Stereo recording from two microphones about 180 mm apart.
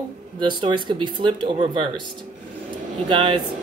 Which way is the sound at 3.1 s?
30° right (ahead or behind).